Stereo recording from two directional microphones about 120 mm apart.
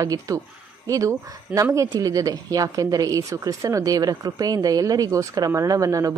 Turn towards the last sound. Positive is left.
turn(degrees=-30)  # may be behind; listen again after turning